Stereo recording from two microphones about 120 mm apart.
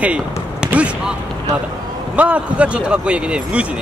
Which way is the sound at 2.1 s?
10° right (ahead or behind).